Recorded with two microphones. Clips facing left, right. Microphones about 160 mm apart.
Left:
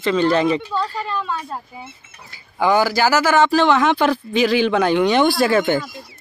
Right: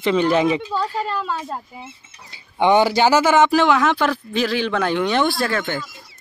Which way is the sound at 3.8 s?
5° left (ahead or behind).